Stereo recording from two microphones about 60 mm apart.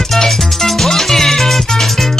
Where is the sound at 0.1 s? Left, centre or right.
Centre.